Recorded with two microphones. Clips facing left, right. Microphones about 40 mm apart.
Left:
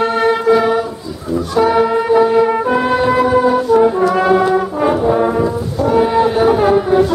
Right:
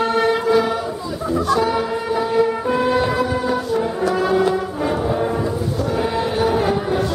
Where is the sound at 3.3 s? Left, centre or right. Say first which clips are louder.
Left 9 dB; left.